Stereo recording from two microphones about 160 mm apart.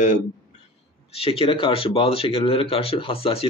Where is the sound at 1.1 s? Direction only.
35° left (ahead or behind).